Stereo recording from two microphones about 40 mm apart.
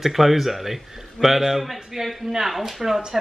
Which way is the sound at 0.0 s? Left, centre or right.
Centre.